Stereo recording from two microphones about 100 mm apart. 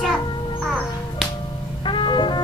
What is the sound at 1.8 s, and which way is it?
Music, 55° left (ahead or behind).